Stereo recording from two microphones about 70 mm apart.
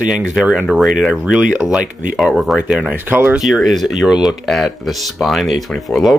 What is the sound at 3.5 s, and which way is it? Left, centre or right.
Speech, centre.